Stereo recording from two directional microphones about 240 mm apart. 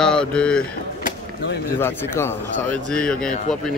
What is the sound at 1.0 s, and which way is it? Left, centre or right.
Chop, left.